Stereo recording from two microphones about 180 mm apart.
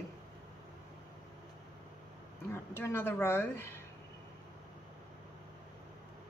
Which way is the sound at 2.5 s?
15° left (ahead or behind).